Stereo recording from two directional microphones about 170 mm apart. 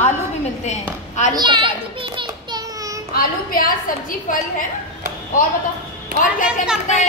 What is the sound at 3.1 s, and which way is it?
A woman's voice, 55° left (ahead or behind).